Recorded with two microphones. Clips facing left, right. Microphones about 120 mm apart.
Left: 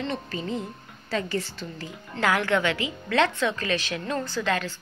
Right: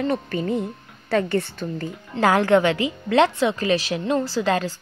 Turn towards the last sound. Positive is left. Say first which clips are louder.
# right 5 dB
turn(degrees=-35)  # may be behind; listen again after turning